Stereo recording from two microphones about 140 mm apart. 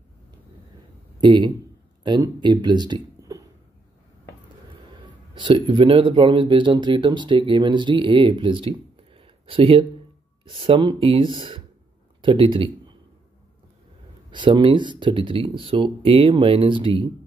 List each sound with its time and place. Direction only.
1.2 s speech: 30° right (ahead or behind)
5.0 s speech: 35° right (ahead or behind)
14.3 s speech: 35° right (ahead or behind)